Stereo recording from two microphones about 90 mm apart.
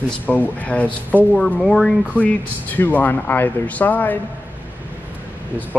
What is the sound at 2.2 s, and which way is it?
Speech, 20° left (ahead or behind).